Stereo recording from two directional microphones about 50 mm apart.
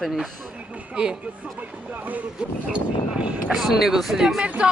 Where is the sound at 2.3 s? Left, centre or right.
Right.